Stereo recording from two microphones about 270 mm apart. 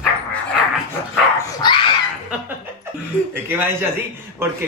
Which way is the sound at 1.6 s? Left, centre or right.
Centre.